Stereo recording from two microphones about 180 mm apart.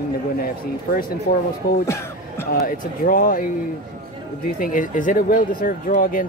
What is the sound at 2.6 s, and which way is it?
Speech, 50° left (ahead or behind).